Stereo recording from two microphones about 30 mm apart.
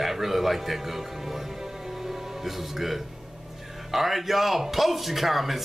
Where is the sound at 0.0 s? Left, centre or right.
Centre.